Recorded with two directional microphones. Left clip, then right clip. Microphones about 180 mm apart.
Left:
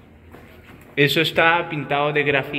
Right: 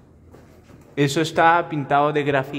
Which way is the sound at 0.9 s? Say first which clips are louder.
Left 2 dB; 25° right (ahead or behind).